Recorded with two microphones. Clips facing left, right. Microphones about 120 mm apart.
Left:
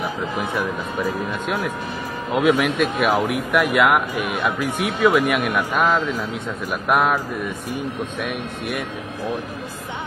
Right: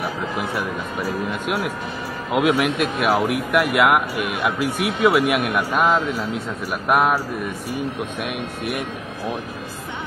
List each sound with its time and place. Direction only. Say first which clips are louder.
2.3 s speech: left 1 dB; centre (ahead or behind)